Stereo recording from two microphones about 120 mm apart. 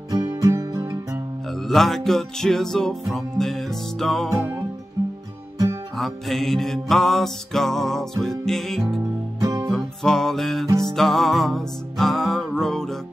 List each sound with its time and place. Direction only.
0.1 s music: 30° right (ahead or behind)
1.5 s music: centre (ahead or behind)
5.0 s music: 30° right (ahead or behind)
5.9 s music: centre (ahead or behind)
9.4 s music: 25° right (ahead or behind)
9.7 s music: 5° left (ahead or behind)